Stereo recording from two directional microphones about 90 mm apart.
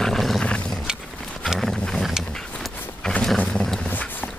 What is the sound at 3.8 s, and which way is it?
Dog, 20° left (ahead or behind).